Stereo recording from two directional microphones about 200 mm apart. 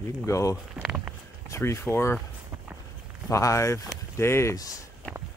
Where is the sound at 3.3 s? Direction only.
15° left (ahead or behind).